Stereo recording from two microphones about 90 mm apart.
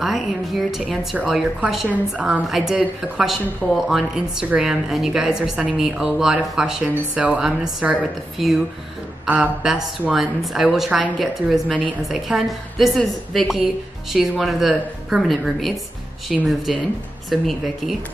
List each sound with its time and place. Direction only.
0.0 s a woman's voice: centre (ahead or behind)
1.9 s a woman's voice: 15° right (ahead or behind)
6.8 s a woman's voice: 15° right (ahead or behind); by 17.9 s centre (ahead or behind)